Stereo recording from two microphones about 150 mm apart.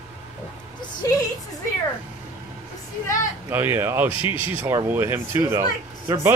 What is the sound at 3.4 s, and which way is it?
Speech, 15° right (ahead or behind).